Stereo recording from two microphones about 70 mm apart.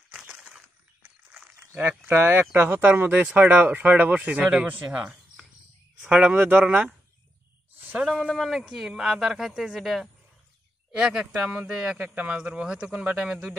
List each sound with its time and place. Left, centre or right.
0.1 s a sound: centre
2.0 s speech: right
4.8 s a sound: centre
6.0 s speech: centre
8.2 s speech: centre
12.0 s speech: centre